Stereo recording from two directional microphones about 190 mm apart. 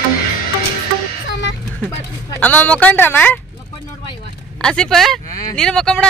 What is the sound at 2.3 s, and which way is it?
Speech, 10° left (ahead or behind).